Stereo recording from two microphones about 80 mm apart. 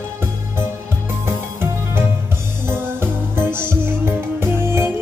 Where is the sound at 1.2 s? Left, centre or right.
Right.